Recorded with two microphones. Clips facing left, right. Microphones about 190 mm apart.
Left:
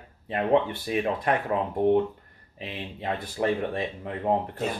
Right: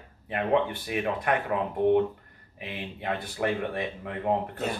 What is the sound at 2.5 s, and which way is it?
Speech, 25° left (ahead or behind).